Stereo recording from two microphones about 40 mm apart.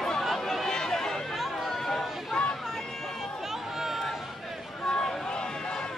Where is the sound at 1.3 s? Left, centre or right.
Centre.